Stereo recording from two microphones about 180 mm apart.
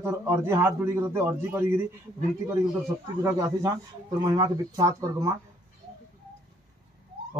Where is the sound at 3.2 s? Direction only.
20° right (ahead or behind).